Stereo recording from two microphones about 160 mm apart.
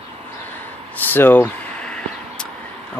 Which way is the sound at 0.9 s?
10° left (ahead or behind).